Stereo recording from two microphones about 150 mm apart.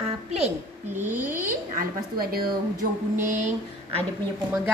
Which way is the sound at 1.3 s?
70° right (ahead or behind).